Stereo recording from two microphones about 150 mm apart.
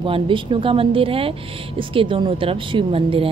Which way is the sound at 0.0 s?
35° right (ahead or behind).